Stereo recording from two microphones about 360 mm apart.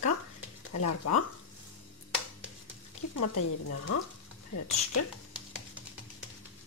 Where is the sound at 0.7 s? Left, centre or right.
Left.